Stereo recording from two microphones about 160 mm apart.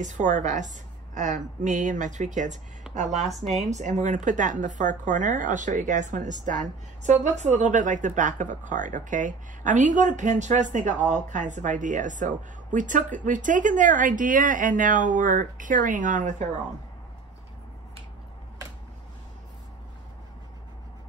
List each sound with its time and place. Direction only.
0.0 s speech: 50° right (ahead or behind)
3.2 s speech: centre (ahead or behind)
3.7 s speech: 50° right (ahead or behind)